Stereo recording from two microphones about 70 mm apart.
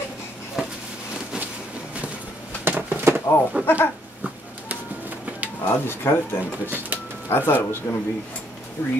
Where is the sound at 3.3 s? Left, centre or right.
Left.